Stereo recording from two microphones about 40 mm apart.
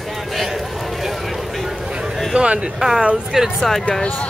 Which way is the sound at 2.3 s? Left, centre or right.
Right.